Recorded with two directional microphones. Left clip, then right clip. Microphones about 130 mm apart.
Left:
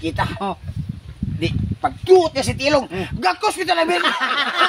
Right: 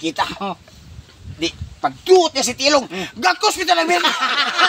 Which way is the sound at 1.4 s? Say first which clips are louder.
Right 1 dB; 20° right (ahead or behind).